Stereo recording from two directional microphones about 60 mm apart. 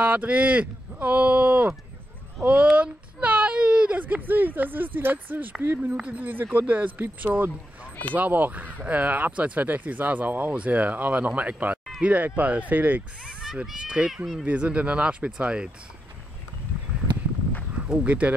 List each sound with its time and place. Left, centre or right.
0.0 s speech: right
13.2 s a sound: centre
13.7 s a child's voice: centre
17.8 s speech: centre